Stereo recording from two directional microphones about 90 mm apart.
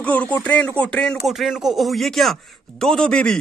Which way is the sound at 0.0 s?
15° left (ahead or behind).